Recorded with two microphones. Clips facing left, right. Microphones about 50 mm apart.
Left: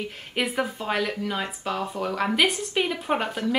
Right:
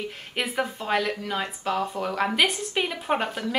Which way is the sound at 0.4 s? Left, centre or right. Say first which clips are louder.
Left 1 dB; centre.